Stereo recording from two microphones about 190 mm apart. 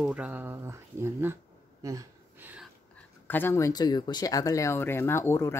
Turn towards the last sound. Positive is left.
turn(degrees=15)  # may be behind; listen again after turning